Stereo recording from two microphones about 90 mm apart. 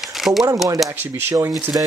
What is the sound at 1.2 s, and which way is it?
Speech, 30° right (ahead or behind).